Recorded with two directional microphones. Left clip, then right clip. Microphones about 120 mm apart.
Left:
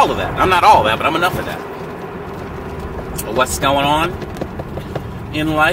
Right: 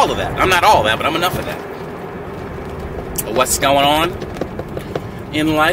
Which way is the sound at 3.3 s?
25° right (ahead or behind).